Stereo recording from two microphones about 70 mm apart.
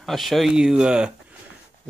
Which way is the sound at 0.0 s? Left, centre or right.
Centre.